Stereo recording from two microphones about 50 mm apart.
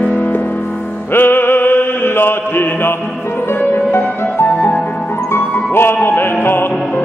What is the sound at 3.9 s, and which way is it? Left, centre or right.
Music, left.